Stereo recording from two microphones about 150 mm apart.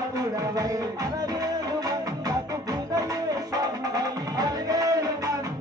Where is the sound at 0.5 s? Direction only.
25° right (ahead or behind).